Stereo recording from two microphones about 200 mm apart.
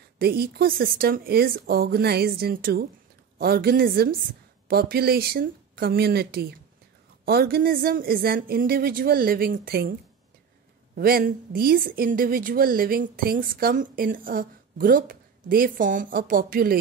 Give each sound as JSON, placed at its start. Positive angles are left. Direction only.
{"t": 0.2, "sound": "a woman's voice", "side_deg": -50}
{"t": 11.0, "sound": "a woman's voice", "side_deg": -50}